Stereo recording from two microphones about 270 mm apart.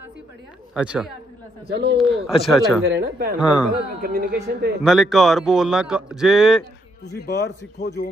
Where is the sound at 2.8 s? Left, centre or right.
Right.